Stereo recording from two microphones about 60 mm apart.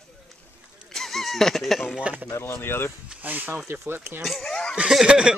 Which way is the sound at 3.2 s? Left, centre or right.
Right.